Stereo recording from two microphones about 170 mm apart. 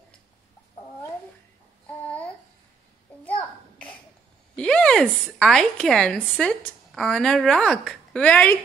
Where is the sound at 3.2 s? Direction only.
10° left (ahead or behind).